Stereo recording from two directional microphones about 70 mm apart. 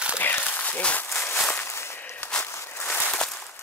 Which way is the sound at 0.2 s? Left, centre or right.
Left.